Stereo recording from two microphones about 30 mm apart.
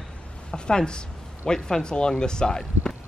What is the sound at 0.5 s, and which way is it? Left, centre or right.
A woman's voice, left.